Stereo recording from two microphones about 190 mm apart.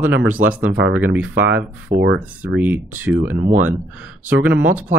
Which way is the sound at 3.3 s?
40° right (ahead or behind).